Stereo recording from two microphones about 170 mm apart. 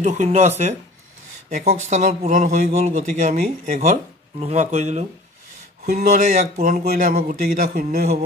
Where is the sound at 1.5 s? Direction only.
40° right (ahead or behind).